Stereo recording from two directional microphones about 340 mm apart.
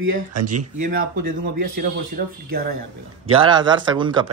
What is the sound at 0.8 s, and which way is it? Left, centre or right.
Speech, right.